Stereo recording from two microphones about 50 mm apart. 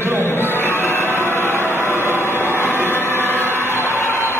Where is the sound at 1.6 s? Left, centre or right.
Left.